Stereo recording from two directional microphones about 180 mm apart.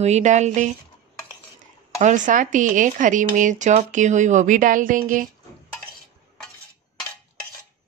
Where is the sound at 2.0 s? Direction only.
45° right (ahead or behind).